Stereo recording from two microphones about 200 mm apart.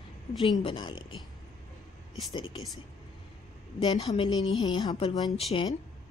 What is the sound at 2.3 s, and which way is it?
Speech, 25° left (ahead or behind).